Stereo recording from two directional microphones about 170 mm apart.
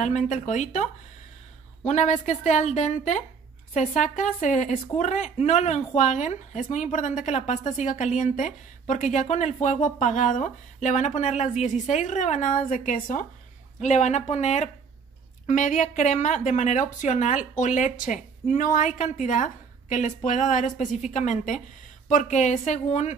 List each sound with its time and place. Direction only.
0.0 s speech: 45° left (ahead or behind)
1.9 s speech: 45° left (ahead or behind)